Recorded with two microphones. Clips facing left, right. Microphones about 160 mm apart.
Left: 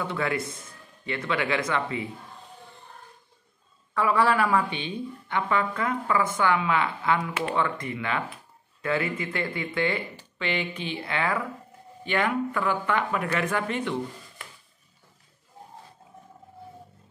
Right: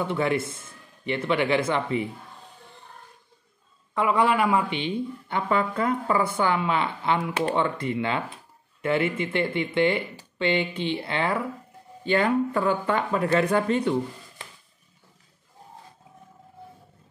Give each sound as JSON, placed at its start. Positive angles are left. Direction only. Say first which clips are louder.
{"t": 0.0, "sound": "speech", "louder": "right 4 dB", "side_deg": -25}
{"t": 3.9, "sound": "speech", "louder": "right 1 dB", "side_deg": -20}